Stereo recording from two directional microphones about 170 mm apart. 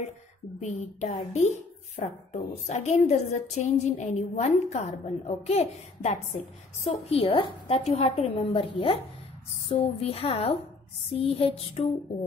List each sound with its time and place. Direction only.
0.6 s a woman's voice: 45° left (ahead or behind)